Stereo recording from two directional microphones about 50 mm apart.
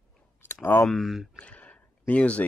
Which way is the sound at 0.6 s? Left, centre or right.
Left.